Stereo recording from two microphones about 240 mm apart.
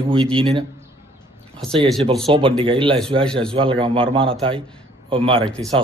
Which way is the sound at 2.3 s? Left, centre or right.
Right.